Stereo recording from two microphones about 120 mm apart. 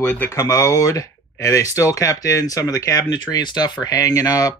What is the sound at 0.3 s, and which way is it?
Speech, 25° left (ahead or behind).